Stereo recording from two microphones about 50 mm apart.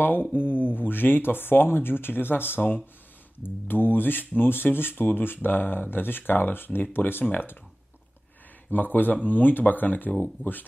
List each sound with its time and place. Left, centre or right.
0.0 s speech: left
8.6 s speech: left